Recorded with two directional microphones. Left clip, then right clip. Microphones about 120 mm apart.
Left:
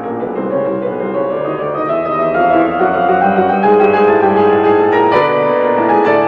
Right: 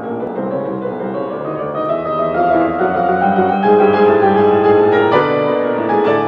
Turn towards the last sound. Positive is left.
turn(degrees=30)  # may be behind; listen again after turning